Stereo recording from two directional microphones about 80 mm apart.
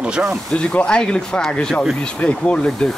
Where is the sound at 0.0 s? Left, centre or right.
Centre.